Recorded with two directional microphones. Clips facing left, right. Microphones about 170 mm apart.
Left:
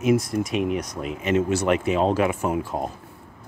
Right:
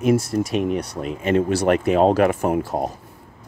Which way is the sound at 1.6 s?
45° right (ahead or behind).